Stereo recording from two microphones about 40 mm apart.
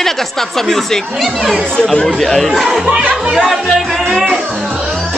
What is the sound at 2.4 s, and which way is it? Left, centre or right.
Speech, centre.